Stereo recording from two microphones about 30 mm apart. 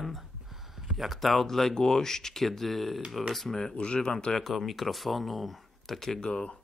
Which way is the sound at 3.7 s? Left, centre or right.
Left.